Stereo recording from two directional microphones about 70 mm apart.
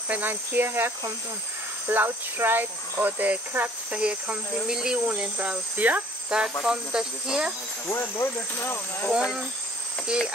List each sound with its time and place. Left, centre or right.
0.1 s speech: right
6.6 s speech: centre
7.8 s speech: left
9.1 s speech: centre